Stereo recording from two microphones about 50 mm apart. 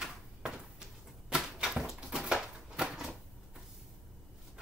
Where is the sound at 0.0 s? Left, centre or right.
Centre.